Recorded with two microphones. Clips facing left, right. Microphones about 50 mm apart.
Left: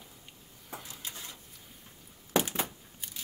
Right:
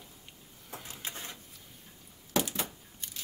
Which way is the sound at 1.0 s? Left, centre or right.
Right.